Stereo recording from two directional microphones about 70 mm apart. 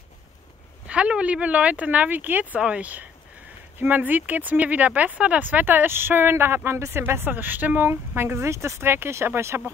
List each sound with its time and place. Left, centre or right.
0.8 s speech: centre; by 9.6 s right